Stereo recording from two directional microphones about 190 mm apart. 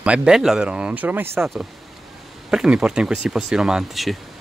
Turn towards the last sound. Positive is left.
turn(degrees=0)  # may be behind; listen again after turning